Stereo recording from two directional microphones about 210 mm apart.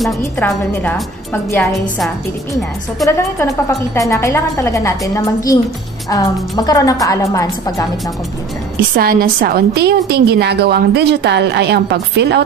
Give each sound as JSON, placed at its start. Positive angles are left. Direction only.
{"t": 0.2, "sound": "a woman's voice", "side_deg": 10}
{"t": 3.1, "sound": "a woman's voice", "side_deg": 10}
{"t": 8.9, "sound": "a woman's voice", "side_deg": -40}